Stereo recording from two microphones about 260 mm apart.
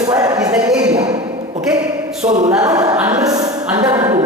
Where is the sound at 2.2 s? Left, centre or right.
Right.